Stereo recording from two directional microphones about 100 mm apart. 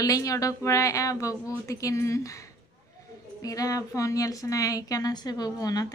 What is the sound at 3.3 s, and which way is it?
Speech, 35° left (ahead or behind).